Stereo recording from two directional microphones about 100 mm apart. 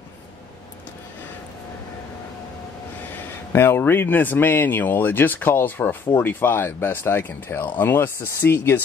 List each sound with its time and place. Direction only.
3.5 s speech: 20° left (ahead or behind)